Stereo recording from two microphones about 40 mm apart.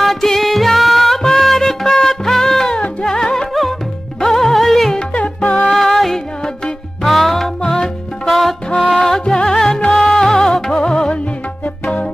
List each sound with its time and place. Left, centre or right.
0.0 s music: centre
4.9 s music: left
5.7 s music: centre
8.3 s music: centre; by 11.1 s left
11.8 s music: left